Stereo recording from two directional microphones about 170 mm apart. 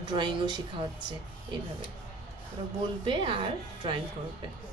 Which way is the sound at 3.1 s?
30° right (ahead or behind).